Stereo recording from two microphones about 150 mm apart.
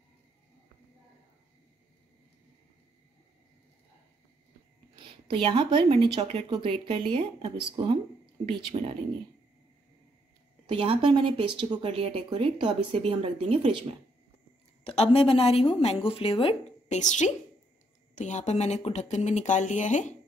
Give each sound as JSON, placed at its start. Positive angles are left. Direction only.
{"t": 4.9, "sound": "speech", "side_deg": -35}
{"t": 10.7, "sound": "speech", "side_deg": -35}
{"t": 14.9, "sound": "a woman's voice", "side_deg": 40}
{"t": 17.0, "sound": "speech", "side_deg": 55}